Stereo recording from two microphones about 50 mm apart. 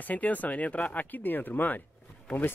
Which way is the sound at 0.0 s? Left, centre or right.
Left.